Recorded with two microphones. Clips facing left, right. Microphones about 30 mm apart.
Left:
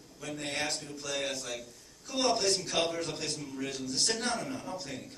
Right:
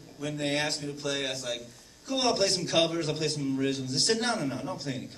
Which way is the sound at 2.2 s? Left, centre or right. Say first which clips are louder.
Right 2 dB; right.